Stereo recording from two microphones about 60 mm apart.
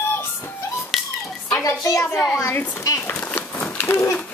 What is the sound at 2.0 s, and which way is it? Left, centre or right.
Speech, centre.